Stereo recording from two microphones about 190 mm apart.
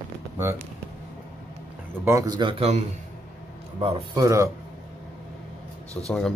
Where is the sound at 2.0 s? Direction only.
15° right (ahead or behind).